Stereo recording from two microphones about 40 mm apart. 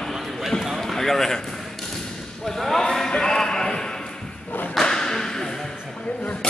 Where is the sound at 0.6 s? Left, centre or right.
Centre.